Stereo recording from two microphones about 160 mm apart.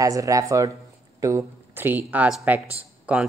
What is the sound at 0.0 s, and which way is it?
Speech, 20° right (ahead or behind).